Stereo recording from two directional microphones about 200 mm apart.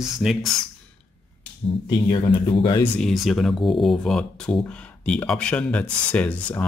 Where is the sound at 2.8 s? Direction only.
Centre (ahead or behind).